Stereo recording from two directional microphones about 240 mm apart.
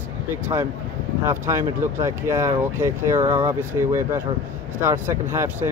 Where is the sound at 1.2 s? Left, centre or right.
Centre.